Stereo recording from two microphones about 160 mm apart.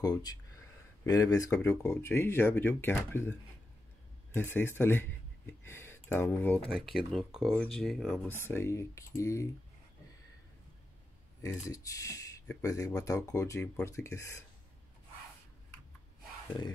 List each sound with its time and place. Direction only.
0.0 s speech: 25° left (ahead or behind)
6.7 s speech: centre (ahead or behind)
8.3 s speech: 15° left (ahead or behind)
11.4 s speech: 20° left (ahead or behind)